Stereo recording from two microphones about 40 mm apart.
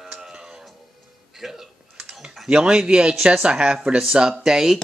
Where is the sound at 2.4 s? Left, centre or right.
Right.